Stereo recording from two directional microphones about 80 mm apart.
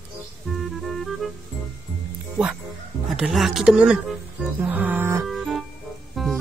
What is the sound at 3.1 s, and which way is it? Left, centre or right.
Speech, centre.